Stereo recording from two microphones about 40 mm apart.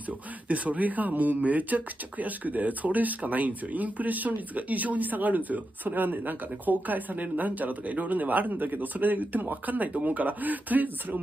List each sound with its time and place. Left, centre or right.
0.5 s speech: right